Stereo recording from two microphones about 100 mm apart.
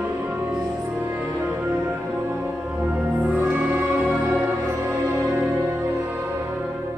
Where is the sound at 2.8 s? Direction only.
15° right (ahead or behind).